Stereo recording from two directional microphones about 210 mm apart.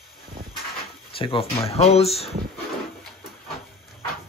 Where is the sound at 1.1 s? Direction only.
25° left (ahead or behind).